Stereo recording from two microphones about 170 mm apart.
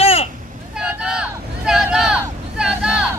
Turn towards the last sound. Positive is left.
turn(degrees=-5)  # may be behind; listen again after turning